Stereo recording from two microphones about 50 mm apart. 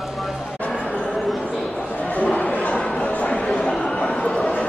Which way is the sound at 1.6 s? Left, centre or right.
Left.